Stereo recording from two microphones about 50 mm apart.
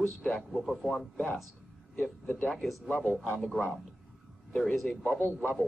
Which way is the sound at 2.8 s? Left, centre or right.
Right.